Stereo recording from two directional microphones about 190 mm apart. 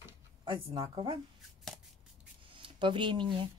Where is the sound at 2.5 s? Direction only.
25° right (ahead or behind).